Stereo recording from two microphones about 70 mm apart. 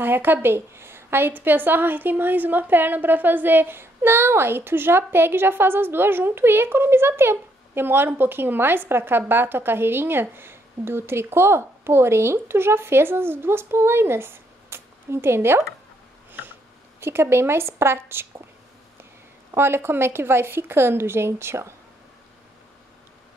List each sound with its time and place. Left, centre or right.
0.0 s a woman's voice: right
17.0 s a woman's voice: right
19.5 s a woman's voice: right